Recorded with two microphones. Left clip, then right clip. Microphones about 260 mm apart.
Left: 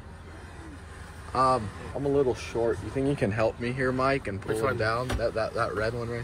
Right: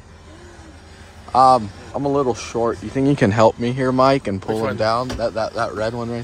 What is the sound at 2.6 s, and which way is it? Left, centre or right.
Speech, right.